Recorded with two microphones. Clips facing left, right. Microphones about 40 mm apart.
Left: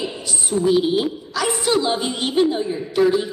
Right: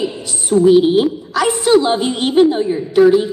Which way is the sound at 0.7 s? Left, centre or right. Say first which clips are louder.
Right 7 dB; right.